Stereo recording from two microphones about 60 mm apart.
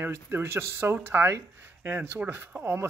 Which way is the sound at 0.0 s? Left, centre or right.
Right.